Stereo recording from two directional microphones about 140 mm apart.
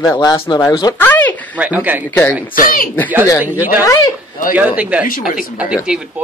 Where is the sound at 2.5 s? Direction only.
90° left.